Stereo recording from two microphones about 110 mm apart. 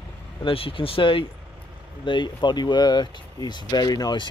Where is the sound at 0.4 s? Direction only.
55° left (ahead or behind).